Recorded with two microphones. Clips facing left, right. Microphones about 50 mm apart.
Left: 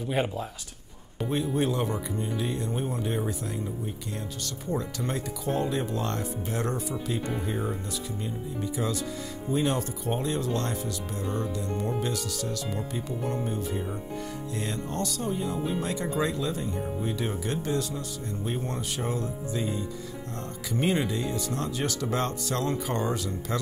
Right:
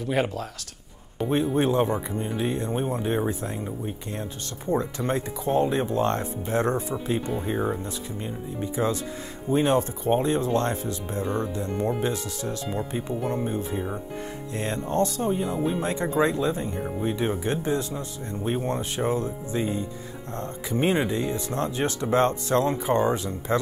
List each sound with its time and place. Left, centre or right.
0.0 s speech: right
1.3 s speech: right